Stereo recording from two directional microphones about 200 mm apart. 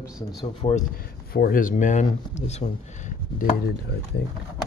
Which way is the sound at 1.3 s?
50° left (ahead or behind).